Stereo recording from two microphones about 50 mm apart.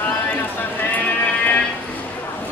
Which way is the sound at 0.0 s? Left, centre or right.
Left.